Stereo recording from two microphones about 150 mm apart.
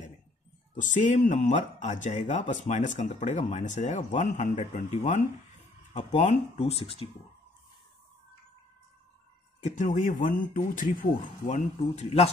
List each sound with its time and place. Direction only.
0.7 s speech: 55° left (ahead or behind)
6.1 s speech: 45° left (ahead or behind)
9.6 s speech: 55° left (ahead or behind)